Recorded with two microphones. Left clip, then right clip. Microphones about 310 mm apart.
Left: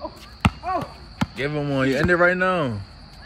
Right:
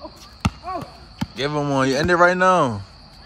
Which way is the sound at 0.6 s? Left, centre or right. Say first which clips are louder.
Left 4 dB; centre.